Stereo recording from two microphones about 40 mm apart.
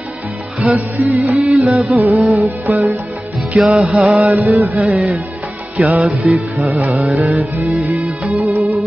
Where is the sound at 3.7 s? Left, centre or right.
Right.